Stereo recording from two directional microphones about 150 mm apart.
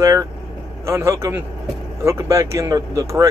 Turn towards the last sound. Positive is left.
turn(degrees=-20)  # may be behind; listen again after turning